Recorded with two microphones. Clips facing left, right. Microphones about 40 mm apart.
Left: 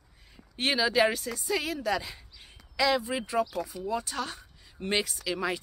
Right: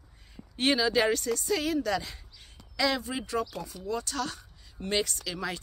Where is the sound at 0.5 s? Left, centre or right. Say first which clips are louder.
Even; centre.